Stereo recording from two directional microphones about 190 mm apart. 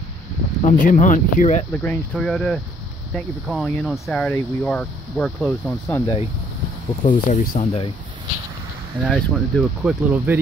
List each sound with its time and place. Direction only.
0.6 s speech: 40° left (ahead or behind)
1.7 s speech: 10° left (ahead or behind)
7.0 s speech: 40° left (ahead or behind)
9.0 s speech: centre (ahead or behind)